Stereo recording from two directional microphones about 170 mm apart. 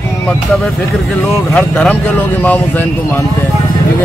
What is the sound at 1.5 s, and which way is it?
Speech, 5° left (ahead or behind).